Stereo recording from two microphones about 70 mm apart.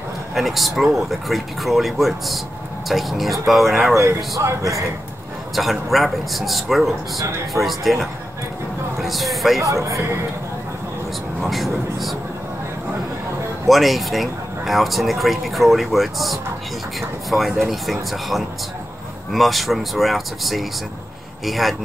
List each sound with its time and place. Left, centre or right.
0.3 s speech: centre
3.9 s speech: right
5.6 s speech: centre
9.6 s speech: right
11.4 s speech: centre
13.7 s speech: centre